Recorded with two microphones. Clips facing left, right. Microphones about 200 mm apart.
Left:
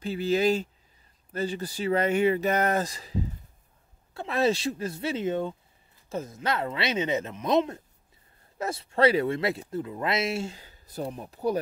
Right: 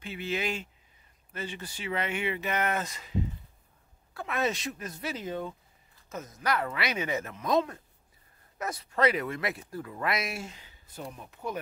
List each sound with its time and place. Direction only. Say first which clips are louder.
0.0 s speech: left 9 dB; 35° left (ahead or behind)